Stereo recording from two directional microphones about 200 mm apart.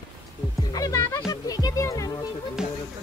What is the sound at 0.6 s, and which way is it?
Speech, 15° left (ahead or behind).